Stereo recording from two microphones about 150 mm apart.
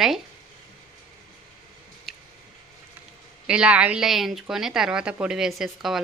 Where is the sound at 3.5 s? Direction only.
5° right (ahead or behind).